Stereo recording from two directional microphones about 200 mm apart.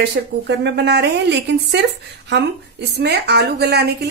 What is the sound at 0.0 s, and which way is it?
Speech, 55° right (ahead or behind).